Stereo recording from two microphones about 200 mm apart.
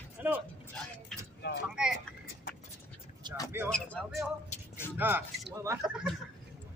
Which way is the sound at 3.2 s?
20° right (ahead or behind).